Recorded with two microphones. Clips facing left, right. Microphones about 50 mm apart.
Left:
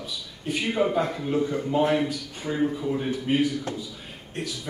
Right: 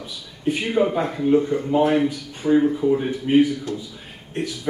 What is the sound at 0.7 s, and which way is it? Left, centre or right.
Speech, centre.